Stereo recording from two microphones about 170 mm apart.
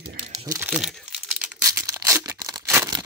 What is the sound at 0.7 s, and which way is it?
Speech, centre (ahead or behind).